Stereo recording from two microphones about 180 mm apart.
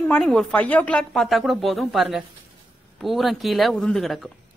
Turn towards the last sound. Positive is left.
turn(degrees=0)  # may be behind; listen again after turning